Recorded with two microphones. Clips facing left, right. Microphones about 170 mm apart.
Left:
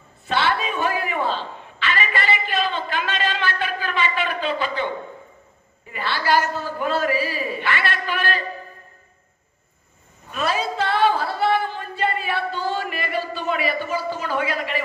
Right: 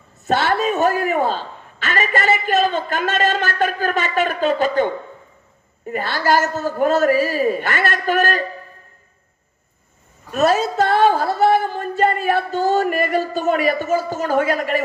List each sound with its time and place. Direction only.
0.3 s a man's voice: 45° right (ahead or behind)
10.3 s speech: 45° right (ahead or behind)